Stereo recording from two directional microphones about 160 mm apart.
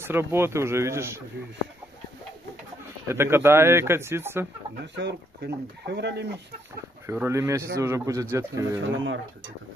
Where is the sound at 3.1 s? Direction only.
15° right (ahead or behind).